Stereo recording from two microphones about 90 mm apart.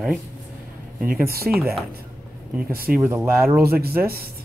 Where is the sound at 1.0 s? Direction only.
30° right (ahead or behind).